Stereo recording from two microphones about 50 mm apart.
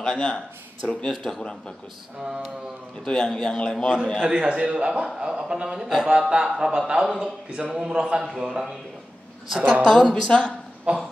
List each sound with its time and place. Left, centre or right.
0.0 s a man's voice: centre
2.2 s a man's voice: centre
3.1 s a man's voice: centre
3.7 s a man's voice: centre
4.2 s a man's voice: centre
9.6 s a woman's voice: right
9.8 s a man's voice: centre
10.9 s speech: right